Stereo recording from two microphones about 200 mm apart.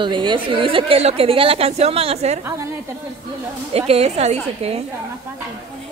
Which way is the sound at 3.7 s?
30° right (ahead or behind).